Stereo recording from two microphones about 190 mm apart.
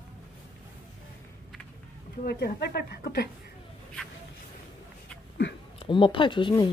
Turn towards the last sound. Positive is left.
turn(degrees=25)  # may be behind; listen again after turning